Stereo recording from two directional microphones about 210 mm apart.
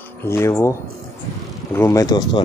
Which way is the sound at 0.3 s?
10° left (ahead or behind).